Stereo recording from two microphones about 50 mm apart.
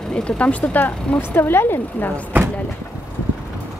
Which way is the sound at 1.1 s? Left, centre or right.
Left.